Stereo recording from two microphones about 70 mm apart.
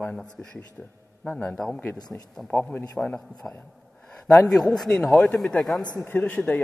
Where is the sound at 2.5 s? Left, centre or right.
Left.